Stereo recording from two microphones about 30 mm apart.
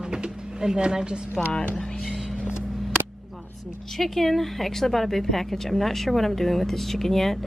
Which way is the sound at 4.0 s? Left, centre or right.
Centre.